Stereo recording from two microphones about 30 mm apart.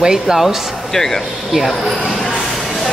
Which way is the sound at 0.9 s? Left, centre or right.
Centre.